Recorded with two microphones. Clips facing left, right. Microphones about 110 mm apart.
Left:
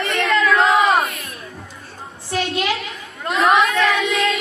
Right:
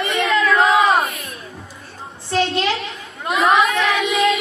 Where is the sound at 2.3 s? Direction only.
30° right (ahead or behind).